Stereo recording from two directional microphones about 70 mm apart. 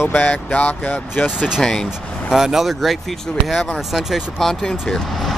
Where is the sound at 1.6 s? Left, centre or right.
Centre.